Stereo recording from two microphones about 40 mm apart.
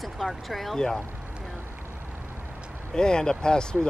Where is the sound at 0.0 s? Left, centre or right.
Centre.